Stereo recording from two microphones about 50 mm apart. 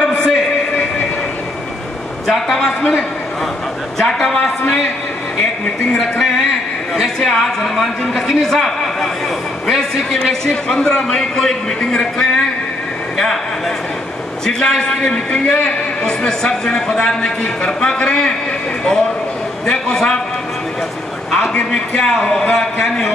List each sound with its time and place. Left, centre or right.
0.1 s a sound: centre
2.2 s a man's voice: centre
5.4 s a man's voice: centre
14.4 s a man's voice: centre
19.6 s a man's voice: centre
21.9 s a man's voice: centre